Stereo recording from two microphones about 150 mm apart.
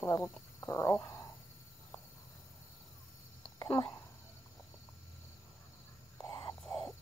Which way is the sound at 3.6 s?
30° left (ahead or behind).